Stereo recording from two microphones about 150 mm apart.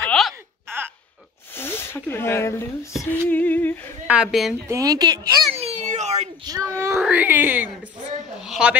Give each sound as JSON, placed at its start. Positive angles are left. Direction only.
{"t": 0.0, "sound": "a sound", "side_deg": 5}
{"t": 0.7, "sound": "a sound", "side_deg": -15}
{"t": 1.5, "sound": "speech", "side_deg": 15}
{"t": 3.0, "sound": "female singing", "side_deg": 15}
{"t": 4.1, "sound": "a woman's voice", "side_deg": -5}
{"t": 4.6, "sound": "speech", "side_deg": -20}
{"t": 5.5, "sound": "baby cry", "side_deg": -45}
{"t": 6.4, "sound": "speech", "side_deg": -25}
{"t": 6.8, "sound": "speech", "side_deg": -15}
{"t": 8.4, "sound": "a sound", "side_deg": -5}